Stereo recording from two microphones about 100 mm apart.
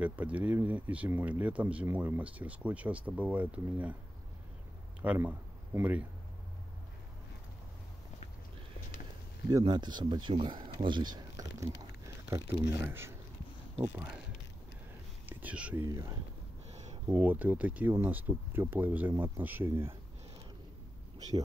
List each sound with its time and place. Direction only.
0.0 s speech: 15° right (ahead or behind)
5.0 s speech: 15° right (ahead or behind)
9.5 s speech: 35° right (ahead or behind)
9.8 s speech: 50° right (ahead or behind)
12.3 s speech: 20° right (ahead or behind)
15.2 s speech: 15° right (ahead or behind)
15.9 s speech: 35° right (ahead or behind)
17.1 s speech: 20° right (ahead or behind)